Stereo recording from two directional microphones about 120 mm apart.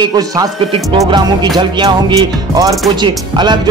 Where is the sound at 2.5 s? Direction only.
30° right (ahead or behind).